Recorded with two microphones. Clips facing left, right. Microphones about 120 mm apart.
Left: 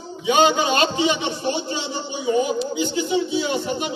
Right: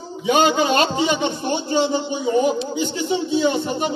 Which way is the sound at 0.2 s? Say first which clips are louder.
Right 1 dB; 40° right (ahead or behind).